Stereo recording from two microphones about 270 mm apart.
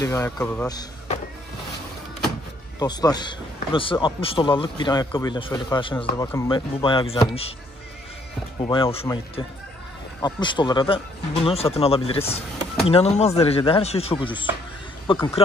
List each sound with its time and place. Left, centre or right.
0.0 s a man's voice: centre
0.7 s power windows: centre
2.8 s a man's voice: centre
8.5 s speech: centre
10.2 s a man's voice: centre